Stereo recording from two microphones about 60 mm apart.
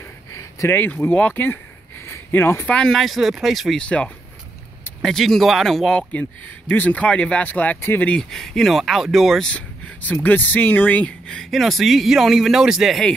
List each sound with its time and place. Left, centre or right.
0.7 s speech: left
2.6 s speech: centre
3.7 s speech: centre
5.0 s speech: centre
6.7 s speech: left
8.2 s speech: centre
9.5 s a sound: left
10.2 s speech: left
11.5 s speech: centre